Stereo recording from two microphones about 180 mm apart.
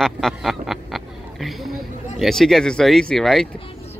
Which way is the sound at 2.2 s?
Centre (ahead or behind).